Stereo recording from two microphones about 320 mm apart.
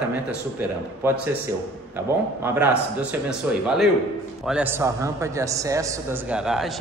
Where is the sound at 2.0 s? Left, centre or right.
Centre.